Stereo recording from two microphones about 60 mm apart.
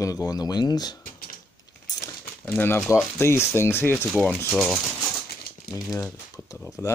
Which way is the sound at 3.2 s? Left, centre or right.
Left.